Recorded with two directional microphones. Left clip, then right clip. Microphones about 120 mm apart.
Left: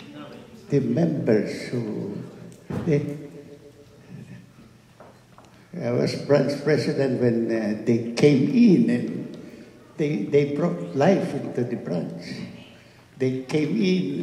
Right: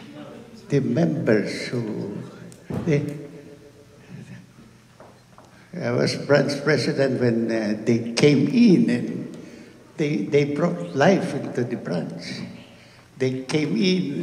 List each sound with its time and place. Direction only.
0.7 s a man's voice: 40° right (ahead or behind)
5.8 s a man's voice: 40° right (ahead or behind)